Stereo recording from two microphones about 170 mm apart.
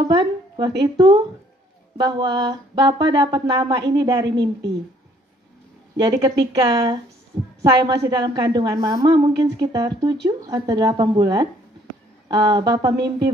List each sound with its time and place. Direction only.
0.1 s a woman's voice: 25° right (ahead or behind)
5.9 s a woman's voice: 20° right (ahead or behind)
8.0 s a woman's voice: 25° right (ahead or behind)